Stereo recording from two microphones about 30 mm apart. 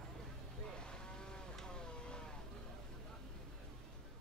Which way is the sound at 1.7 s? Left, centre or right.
Left.